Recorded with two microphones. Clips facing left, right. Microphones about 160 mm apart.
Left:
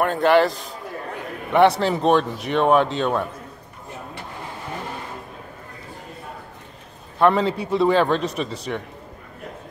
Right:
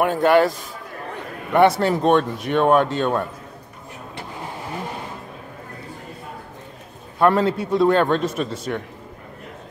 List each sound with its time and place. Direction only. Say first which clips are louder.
0.0 s speech: right 1 dB; 5° right (ahead or behind)
7.2 s speech: right 1 dB; centre (ahead or behind)